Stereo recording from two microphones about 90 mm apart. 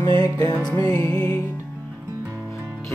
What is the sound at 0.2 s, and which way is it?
Music, 50° left (ahead or behind).